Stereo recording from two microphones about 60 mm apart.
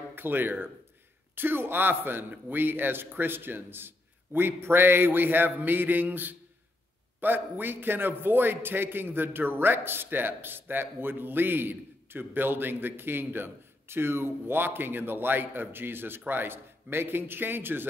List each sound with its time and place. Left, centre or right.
0.1 s a man's voice: right